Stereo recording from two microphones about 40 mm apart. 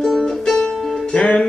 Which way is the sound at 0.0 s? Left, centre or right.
Centre.